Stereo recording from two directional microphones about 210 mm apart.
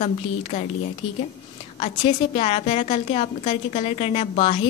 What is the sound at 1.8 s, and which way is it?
A woman's voice, 30° left (ahead or behind).